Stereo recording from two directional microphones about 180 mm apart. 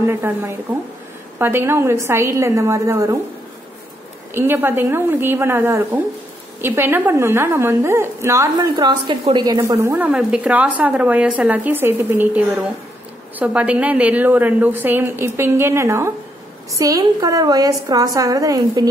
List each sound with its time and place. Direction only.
0.0 s speech: 10° right (ahead or behind)
4.3 s a woman's voice: 10° right (ahead or behind)